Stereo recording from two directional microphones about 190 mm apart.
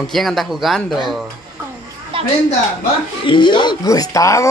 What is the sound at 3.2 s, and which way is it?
Speech, 25° left (ahead or behind).